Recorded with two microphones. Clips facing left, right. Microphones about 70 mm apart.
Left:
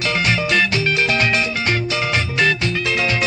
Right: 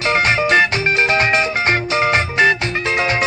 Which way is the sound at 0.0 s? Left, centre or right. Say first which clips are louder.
Right 4 dB; right.